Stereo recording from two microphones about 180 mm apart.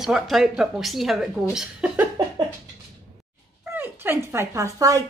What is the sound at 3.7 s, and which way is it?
Speech, 10° right (ahead or behind).